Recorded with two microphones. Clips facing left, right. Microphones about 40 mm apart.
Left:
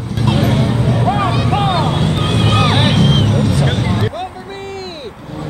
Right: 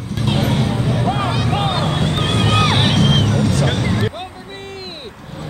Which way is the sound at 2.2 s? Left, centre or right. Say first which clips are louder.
Left 1 dB; left.